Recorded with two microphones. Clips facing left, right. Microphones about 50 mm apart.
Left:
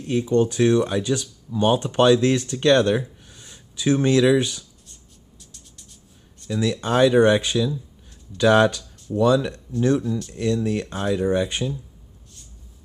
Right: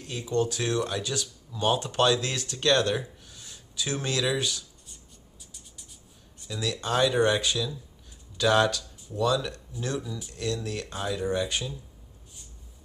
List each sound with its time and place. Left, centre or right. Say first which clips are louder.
0.0 s speech: left 8 dB; left
5.4 s music: left 2 dB; centre
6.6 s speech: left 7 dB; centre
10.0 s speech: left 12 dB; centre
10.3 s speech: left 7 dB; left